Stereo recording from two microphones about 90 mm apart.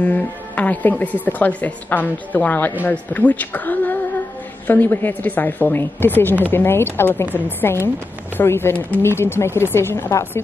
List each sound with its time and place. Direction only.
0.0 s a woman's voice: 20° left (ahead or behind)